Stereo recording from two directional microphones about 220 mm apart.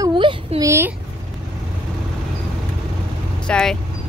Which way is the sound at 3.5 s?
5° left (ahead or behind).